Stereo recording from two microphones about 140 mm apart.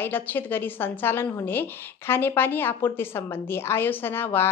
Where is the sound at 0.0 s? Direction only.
15° left (ahead or behind).